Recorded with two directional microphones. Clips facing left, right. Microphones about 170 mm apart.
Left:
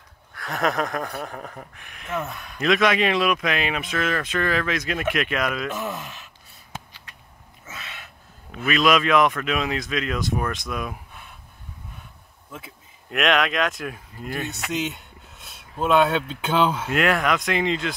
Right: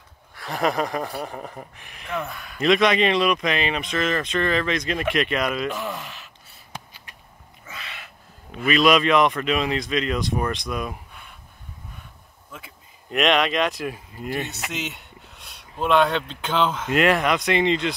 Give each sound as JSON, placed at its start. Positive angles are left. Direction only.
{"t": 0.3, "sound": "speech", "side_deg": 0}
{"t": 7.6, "sound": "a man's voice", "side_deg": 0}
{"t": 13.1, "sound": "speech", "side_deg": 0}